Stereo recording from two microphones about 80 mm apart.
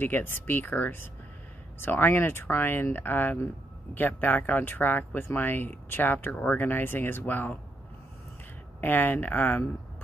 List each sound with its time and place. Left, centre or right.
0.0 s speech: left
8.8 s speech: left